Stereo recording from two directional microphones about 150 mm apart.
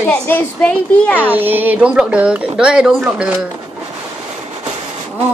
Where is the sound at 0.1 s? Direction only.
10° left (ahead or behind).